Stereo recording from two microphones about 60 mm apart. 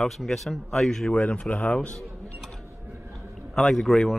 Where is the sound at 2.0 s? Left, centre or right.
Centre.